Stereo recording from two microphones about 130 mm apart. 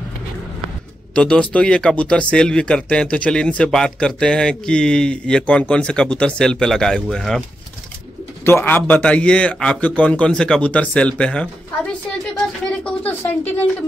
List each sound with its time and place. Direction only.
1.1 s speech: 10° left (ahead or behind)
8.5 s speech: 15° left (ahead or behind)